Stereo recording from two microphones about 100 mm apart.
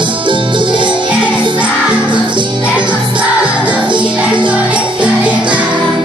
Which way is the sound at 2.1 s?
50° right (ahead or behind).